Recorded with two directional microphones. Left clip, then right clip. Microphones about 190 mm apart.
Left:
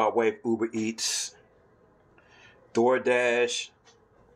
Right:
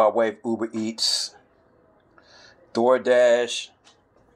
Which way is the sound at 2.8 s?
30° right (ahead or behind).